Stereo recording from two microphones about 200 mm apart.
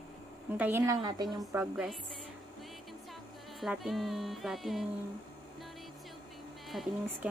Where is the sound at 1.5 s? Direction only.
5° right (ahead or behind).